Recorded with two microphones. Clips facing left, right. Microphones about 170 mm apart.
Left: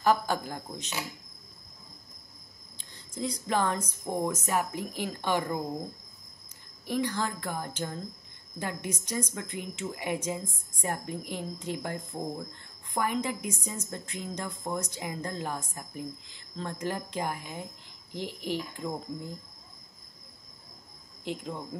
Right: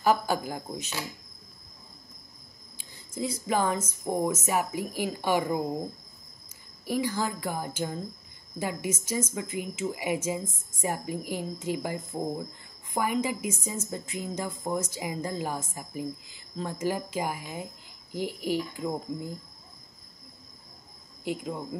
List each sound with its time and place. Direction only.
0.0 s speech: 5° right (ahead or behind)
3.2 s speech: 5° right (ahead or behind)
6.9 s a woman's voice: 5° right (ahead or behind)
21.2 s speech: 5° right (ahead or behind)